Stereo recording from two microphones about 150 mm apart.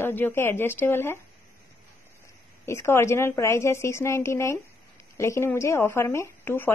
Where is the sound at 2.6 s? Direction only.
20° left (ahead or behind).